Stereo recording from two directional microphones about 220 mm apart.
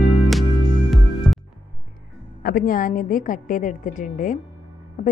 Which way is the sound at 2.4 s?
40° left (ahead or behind).